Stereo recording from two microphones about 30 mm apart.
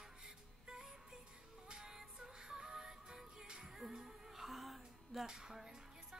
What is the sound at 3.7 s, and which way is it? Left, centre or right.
Music, centre.